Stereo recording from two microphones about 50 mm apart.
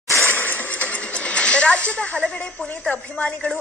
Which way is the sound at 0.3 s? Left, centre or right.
Left.